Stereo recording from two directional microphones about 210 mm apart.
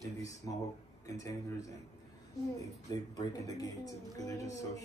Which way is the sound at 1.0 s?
15° left (ahead or behind).